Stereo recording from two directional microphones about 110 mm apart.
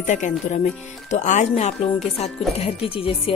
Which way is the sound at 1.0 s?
90° left.